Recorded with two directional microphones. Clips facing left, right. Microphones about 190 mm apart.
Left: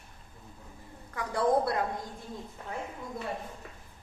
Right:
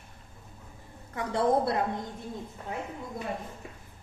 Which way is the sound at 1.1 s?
25° right (ahead or behind).